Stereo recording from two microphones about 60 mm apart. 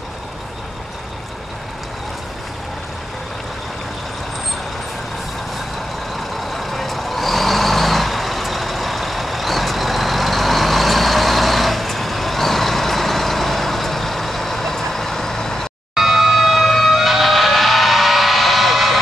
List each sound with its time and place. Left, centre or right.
6.1 s vehicle: centre
15.9 s vehicle: centre